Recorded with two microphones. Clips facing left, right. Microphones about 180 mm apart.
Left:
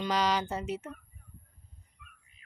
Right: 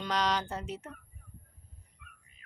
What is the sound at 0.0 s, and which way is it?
Speech, 5° left (ahead or behind).